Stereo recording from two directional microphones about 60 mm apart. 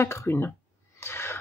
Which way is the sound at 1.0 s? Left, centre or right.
Left.